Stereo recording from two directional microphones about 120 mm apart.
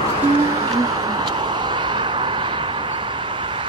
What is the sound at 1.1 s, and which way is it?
Vehicle, 40° right (ahead or behind).